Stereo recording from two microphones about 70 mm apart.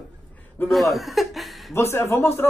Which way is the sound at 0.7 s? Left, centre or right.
Centre.